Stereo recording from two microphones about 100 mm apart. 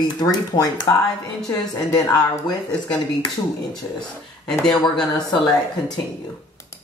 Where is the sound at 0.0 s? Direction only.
40° left (ahead or behind).